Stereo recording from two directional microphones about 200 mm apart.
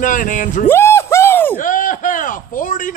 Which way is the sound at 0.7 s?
10° left (ahead or behind).